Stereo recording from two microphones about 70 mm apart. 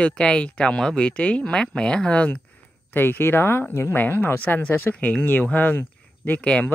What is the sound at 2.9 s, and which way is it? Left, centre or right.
Speech, left.